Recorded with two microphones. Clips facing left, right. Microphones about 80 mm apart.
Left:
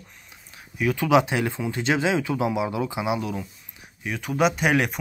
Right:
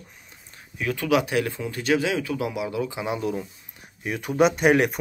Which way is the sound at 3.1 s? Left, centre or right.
Centre.